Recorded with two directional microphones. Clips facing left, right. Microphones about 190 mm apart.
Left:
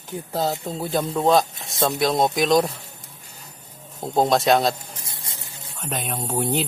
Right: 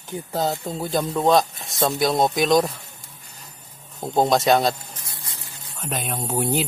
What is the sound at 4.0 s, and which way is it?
Speech, centre (ahead or behind).